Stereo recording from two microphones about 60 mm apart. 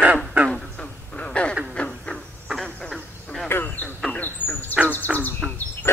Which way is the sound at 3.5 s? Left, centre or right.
Left.